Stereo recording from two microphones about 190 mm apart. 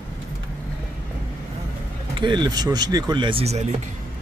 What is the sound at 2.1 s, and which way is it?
Speech, 25° right (ahead or behind).